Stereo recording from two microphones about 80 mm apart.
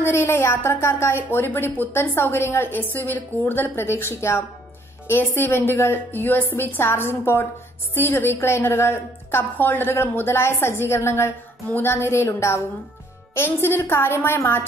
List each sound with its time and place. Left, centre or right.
0.0 s a woman's voice: left